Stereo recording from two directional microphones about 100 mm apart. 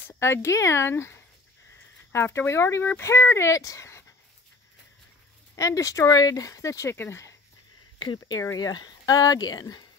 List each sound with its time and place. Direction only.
0.1 s speech: 25° left (ahead or behind)
5.6 s speech: 35° left (ahead or behind)